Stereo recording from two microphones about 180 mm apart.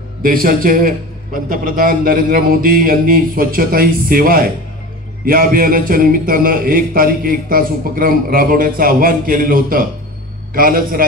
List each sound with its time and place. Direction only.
0.2 s a man's voice: 50° right (ahead or behind)